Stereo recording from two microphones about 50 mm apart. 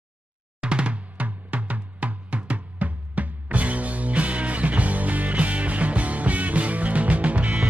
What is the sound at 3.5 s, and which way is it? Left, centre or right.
Music, right.